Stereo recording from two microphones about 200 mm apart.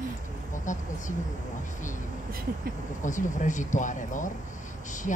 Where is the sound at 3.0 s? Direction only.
40° left (ahead or behind).